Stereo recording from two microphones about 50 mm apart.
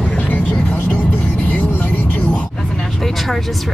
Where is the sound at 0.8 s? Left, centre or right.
Left.